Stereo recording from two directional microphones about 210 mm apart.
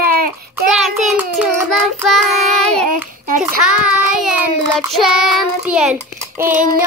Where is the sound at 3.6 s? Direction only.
5° right (ahead or behind).